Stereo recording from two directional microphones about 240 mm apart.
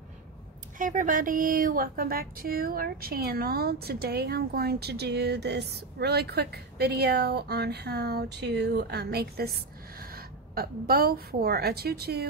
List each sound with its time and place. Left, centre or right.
0.7 s speech: right